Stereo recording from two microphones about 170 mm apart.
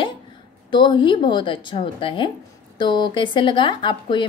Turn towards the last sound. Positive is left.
turn(degrees=30)  # may be behind; listen again after turning